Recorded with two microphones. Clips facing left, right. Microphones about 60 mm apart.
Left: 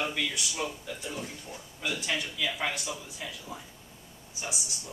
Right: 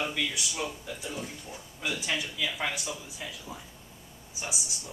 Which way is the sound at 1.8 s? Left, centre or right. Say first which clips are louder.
Even; centre.